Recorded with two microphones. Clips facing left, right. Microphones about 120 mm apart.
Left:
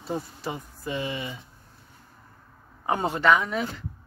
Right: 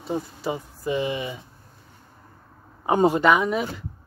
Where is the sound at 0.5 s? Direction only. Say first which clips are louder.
Right 6 dB; 15° right (ahead or behind).